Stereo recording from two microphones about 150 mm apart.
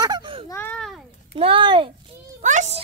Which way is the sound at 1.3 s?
35° right (ahead or behind).